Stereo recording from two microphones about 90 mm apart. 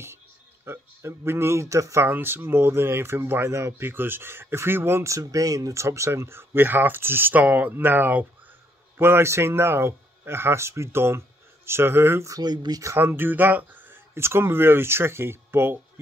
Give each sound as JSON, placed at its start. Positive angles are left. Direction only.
{"t": 0.7, "sound": "speech", "side_deg": -30}
{"t": 12.3, "sound": "speech", "side_deg": -45}
{"t": 12.9, "sound": "speech", "side_deg": -25}